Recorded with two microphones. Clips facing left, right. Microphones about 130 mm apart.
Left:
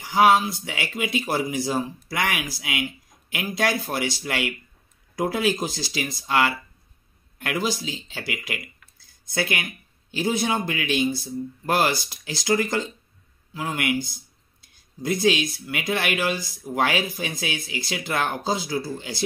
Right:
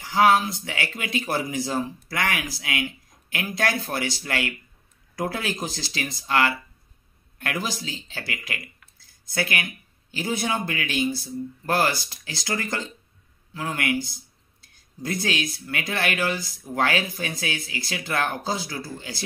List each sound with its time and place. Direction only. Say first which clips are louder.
0.0 s speech: left 1 dB; 15° left (ahead or behind)